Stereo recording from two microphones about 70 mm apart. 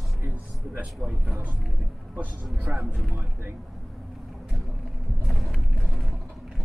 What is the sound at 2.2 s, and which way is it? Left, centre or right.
Speech, right.